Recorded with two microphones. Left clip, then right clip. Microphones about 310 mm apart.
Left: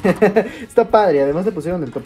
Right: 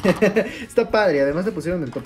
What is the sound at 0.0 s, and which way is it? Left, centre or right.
Speech, centre.